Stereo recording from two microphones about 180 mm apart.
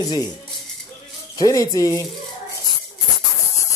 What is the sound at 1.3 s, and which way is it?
Speech, 20° left (ahead or behind).